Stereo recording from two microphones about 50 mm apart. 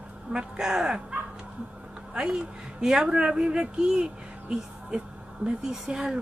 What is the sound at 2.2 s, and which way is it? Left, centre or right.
Speech, centre.